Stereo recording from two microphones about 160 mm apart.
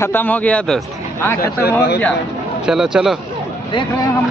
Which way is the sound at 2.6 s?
5° right (ahead or behind).